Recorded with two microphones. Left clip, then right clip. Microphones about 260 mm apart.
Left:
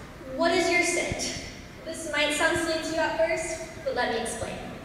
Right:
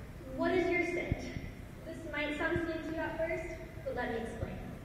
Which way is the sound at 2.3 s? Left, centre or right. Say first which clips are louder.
Left 8 dB; centre.